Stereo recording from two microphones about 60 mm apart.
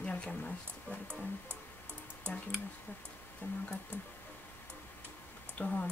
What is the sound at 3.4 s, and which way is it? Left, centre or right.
Speech, left.